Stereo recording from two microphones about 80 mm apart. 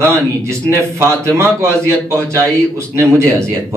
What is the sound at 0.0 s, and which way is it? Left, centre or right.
A man's voice, right.